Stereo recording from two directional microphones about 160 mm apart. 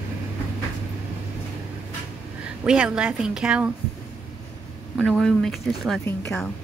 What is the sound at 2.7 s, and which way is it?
A woman's voice, 5° right (ahead or behind).